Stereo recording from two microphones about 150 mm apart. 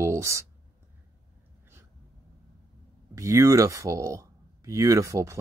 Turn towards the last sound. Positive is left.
turn(degrees=-20)  # may be behind; listen again after turning